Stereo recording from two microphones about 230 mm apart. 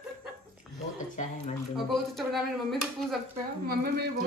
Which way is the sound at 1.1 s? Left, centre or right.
Left.